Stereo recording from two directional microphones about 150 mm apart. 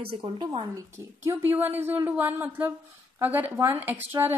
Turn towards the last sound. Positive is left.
turn(degrees=-15)  # may be behind; listen again after turning